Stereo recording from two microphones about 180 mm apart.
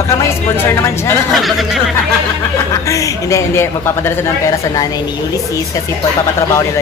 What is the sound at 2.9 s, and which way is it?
Speech, 15° left (ahead or behind).